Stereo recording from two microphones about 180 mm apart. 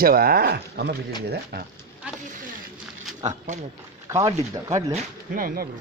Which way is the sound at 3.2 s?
40° right (ahead or behind).